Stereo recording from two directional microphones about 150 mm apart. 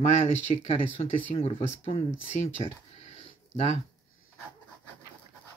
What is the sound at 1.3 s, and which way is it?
Speech, 40° left (ahead or behind).